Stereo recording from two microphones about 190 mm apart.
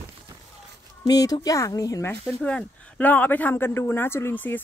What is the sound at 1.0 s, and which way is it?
Speech, 20° left (ahead or behind).